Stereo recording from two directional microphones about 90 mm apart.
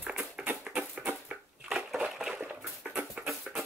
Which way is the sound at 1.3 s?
10° right (ahead or behind).